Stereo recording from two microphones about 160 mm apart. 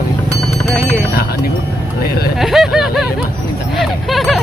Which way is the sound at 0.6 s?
Centre (ahead or behind).